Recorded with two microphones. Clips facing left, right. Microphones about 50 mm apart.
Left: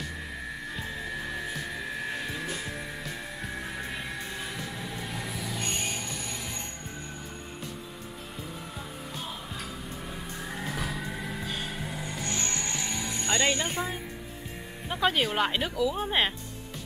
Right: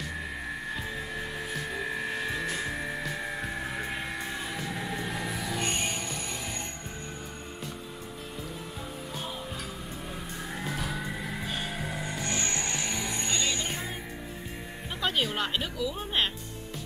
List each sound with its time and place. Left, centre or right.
5.0 s vehicle: centre
5.6 s music: right
10.6 s music: centre
12.0 s music: right
13.3 s music: left
14.9 s music: centre
15.4 s speech: centre